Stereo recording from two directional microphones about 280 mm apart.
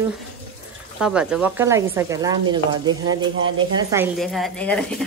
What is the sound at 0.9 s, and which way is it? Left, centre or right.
A woman's voice, centre.